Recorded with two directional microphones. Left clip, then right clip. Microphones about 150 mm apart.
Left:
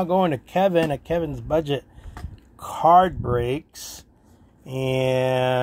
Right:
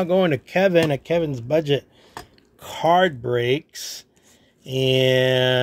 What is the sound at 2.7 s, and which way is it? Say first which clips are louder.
Mantra: left 2 dB; 45° right (ahead or behind).